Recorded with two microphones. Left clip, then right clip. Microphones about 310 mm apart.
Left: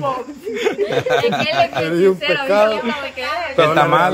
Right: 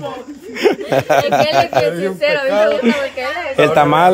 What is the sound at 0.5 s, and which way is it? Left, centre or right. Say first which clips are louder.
A man's voice: right 4 dB; centre.